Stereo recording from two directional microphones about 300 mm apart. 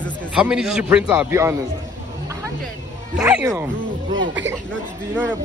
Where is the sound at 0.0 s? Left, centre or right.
Centre.